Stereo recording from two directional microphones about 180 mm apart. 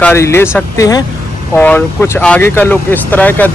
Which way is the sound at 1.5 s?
5° left (ahead or behind).